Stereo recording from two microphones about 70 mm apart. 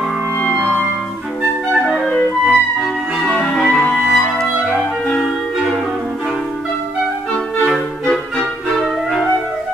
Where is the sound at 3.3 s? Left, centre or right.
Centre.